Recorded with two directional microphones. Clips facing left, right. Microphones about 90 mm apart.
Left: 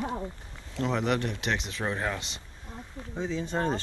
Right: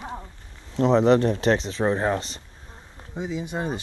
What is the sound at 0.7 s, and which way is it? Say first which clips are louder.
Speech: right 10 dB; 30° right (ahead or behind).